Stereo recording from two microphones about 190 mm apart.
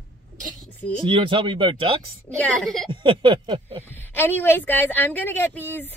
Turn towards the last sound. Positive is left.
turn(degrees=10)  # may be behind; listen again after turning